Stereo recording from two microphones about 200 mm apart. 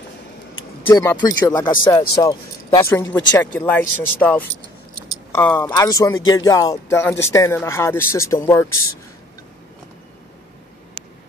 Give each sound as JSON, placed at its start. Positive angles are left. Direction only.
{"t": 0.8, "sound": "speech", "side_deg": 15}